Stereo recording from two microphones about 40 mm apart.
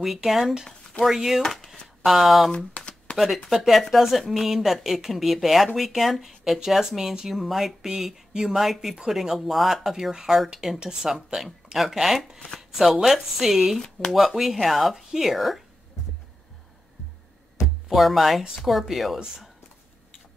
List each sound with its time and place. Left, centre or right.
0.0 s speech: centre
1.4 s speech: centre
1.7 s a sound: centre
2.5 s speech: left
3.1 s shuffling cards: left
3.4 s speech: centre
17.8 s speech: centre